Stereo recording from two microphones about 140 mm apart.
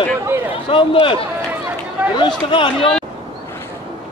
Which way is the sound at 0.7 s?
40° left (ahead or behind).